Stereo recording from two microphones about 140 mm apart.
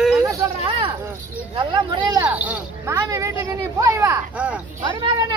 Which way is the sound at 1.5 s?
35° right (ahead or behind).